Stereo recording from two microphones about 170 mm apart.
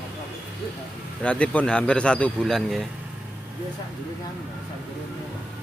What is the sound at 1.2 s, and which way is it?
Speech, 5° left (ahead or behind).